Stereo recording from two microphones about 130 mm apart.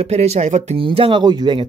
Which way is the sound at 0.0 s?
55° right (ahead or behind).